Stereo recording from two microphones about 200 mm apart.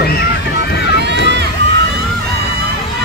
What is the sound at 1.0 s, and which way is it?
Run, 60° right (ahead or behind).